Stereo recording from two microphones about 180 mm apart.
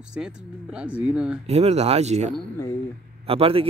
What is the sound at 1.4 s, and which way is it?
A man's voice, 35° right (ahead or behind).